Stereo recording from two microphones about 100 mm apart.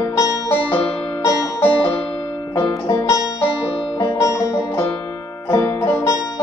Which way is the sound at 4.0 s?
35° left (ahead or behind).